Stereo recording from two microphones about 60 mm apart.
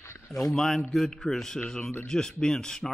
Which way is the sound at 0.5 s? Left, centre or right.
Centre.